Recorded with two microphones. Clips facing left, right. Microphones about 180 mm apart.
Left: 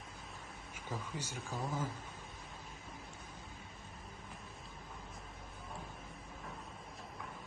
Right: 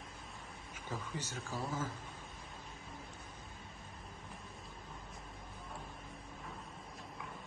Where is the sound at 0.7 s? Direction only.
10° left (ahead or behind).